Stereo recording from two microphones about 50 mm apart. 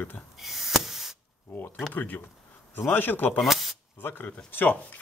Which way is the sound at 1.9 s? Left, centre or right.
Left.